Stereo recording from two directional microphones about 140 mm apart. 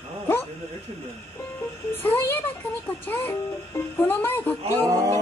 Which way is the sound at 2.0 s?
15° left (ahead or behind).